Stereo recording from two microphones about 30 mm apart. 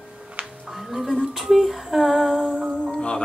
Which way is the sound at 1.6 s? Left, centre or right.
Centre.